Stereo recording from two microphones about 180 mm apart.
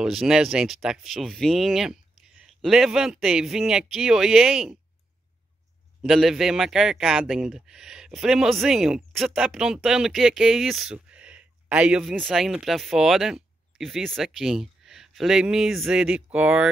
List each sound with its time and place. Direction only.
0.0 s a man's voice: 5° right (ahead or behind)
6.0 s a man's voice: centre (ahead or behind)